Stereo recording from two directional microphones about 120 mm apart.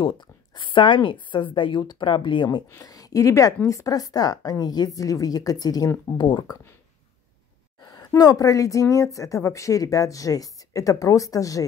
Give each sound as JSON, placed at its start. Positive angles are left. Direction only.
{"t": 0.0, "sound": "a woman's voice", "side_deg": 45}
{"t": 7.8, "sound": "a sound", "side_deg": 35}
{"t": 8.1, "sound": "a woman's voice", "side_deg": 30}